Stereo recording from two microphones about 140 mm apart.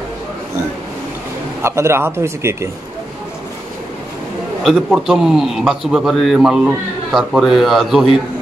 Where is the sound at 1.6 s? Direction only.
20° right (ahead or behind).